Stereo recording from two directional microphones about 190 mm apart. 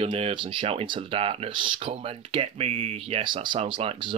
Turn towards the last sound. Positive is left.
turn(degrees=-25)  # may be behind; listen again after turning